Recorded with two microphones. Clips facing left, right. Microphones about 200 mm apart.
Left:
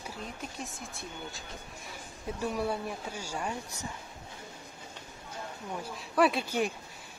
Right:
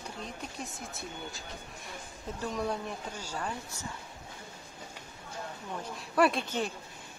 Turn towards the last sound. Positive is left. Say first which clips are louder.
# even
turn(degrees=0)  # may be behind; listen again after turning